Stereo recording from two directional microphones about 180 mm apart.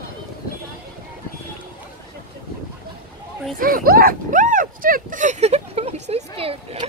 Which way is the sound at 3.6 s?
50° right (ahead or behind).